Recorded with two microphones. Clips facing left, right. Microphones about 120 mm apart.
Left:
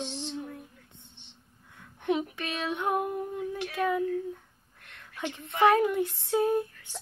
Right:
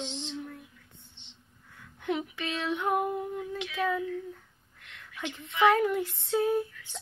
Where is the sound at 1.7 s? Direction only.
20° left (ahead or behind).